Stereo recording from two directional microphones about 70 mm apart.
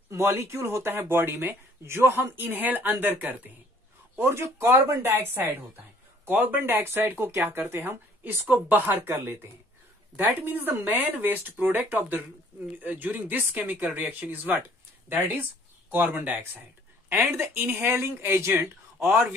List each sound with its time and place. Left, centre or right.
0.1 s speech: right
4.2 s speech: right